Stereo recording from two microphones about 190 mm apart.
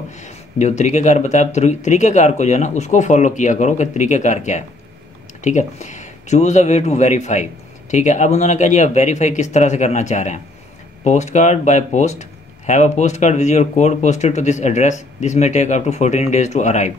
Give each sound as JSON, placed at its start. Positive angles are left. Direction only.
{"t": 0.1, "sound": "speech", "side_deg": 40}